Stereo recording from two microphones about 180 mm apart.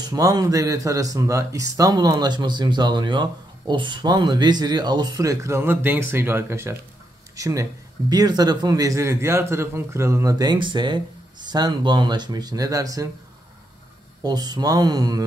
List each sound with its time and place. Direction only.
0.0 s speech: 20° right (ahead or behind)
14.2 s speech: 20° right (ahead or behind)